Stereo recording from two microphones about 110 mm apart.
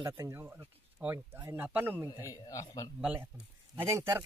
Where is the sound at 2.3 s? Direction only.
30° left (ahead or behind).